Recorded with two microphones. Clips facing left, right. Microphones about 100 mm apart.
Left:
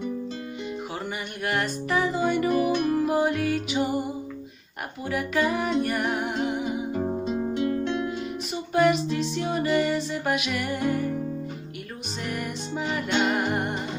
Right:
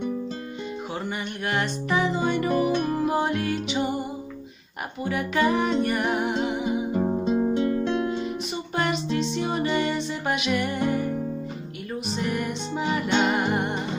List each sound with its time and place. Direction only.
1.0 s music: centre (ahead or behind)
2.5 s music: 30° right (ahead or behind)
3.1 s music: 5° left (ahead or behind)
5.0 s music: centre (ahead or behind)
6.9 s music: 20° right (ahead or behind)
8.5 s music: centre (ahead or behind)
12.3 s music: centre (ahead or behind)